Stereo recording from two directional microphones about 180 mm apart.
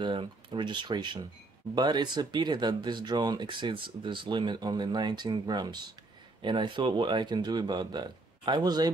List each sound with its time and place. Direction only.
0.0 s speech: 25° right (ahead or behind)